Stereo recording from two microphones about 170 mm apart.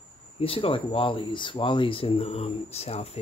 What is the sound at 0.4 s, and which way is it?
Speech, 35° left (ahead or behind).